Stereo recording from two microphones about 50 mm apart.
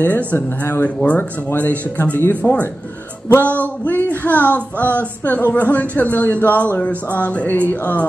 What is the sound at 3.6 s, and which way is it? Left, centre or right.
Music, left.